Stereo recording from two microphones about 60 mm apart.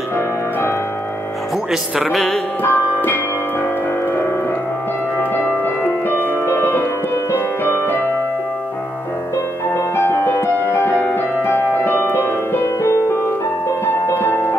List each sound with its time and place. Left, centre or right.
1.7 s speech: centre
2.1 s music: centre
2.6 s music: left
6.0 s music: left
9.7 s music: left
10.9 s music: left
14.1 s music: left